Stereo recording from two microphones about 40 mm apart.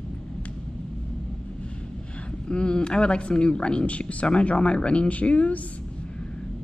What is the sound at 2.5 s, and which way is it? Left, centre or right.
Speech, left.